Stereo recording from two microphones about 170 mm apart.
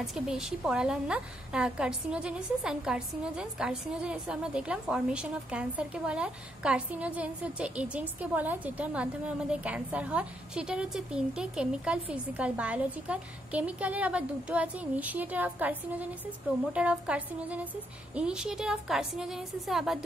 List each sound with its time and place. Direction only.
0.0 s a woman's voice: centre (ahead or behind)